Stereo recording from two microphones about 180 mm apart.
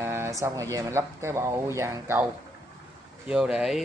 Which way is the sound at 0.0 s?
15° right (ahead or behind).